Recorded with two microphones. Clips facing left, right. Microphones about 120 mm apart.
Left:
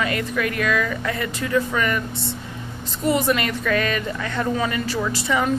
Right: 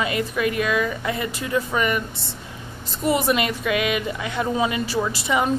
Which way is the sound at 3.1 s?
15° right (ahead or behind).